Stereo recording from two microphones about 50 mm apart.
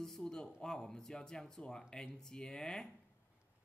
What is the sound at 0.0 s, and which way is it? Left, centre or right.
Speech, centre.